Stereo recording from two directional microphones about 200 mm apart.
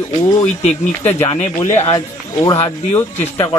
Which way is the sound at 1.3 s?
35° left (ahead or behind).